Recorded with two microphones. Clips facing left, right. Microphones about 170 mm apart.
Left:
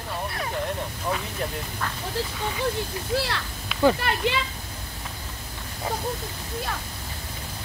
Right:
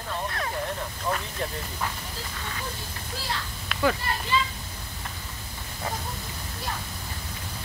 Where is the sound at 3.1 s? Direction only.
80° left.